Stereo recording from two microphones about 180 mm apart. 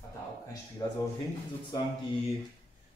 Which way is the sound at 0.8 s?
25° left (ahead or behind).